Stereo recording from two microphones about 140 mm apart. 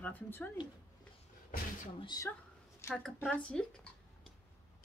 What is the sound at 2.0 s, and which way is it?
Speech, 30° left (ahead or behind).